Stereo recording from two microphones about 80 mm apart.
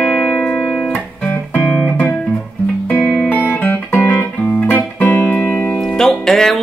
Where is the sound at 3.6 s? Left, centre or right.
Left.